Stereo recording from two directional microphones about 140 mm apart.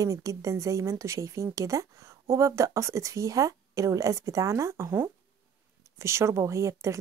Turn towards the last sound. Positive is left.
turn(degrees=-20)  # may be behind; listen again after turning